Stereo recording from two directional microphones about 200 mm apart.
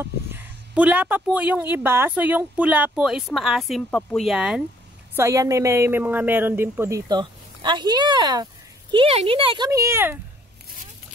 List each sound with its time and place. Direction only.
0.0 s a sound: 10° right (ahead or behind)
1.3 s speech: 10° right (ahead or behind)
5.1 s a woman's voice: 15° right (ahead or behind)
9.7 s a woman's voice: 15° right (ahead or behind)